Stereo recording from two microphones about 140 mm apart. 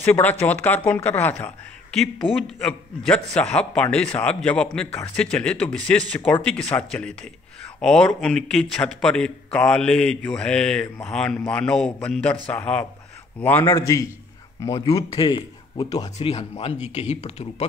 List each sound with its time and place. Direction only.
0.0 s speech: 15° left (ahead or behind)
13.7 s a man's voice: 25° left (ahead or behind)
16.2 s speech: 45° left (ahead or behind)